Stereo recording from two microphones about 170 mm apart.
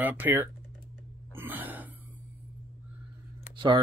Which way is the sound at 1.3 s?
10° right (ahead or behind).